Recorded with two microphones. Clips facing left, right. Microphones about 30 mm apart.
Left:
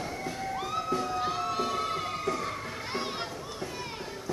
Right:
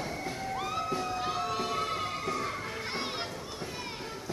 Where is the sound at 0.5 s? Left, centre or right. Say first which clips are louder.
Left 2 dB; centre.